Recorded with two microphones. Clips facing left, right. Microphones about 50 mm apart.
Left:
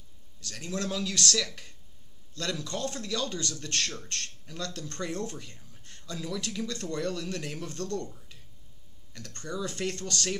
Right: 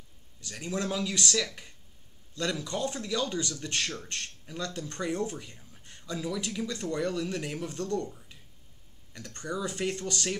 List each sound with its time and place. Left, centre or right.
0.4 s speech: centre